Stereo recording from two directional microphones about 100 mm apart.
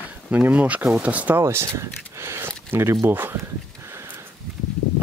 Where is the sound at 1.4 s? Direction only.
30° right (ahead or behind).